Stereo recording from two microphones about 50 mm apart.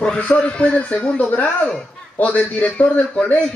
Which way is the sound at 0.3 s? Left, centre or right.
Left.